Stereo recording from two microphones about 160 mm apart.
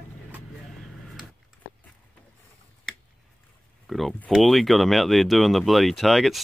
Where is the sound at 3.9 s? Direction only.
Centre (ahead or behind).